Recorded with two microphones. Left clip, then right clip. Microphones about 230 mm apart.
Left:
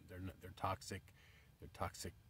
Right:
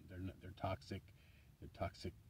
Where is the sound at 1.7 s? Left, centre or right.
Left.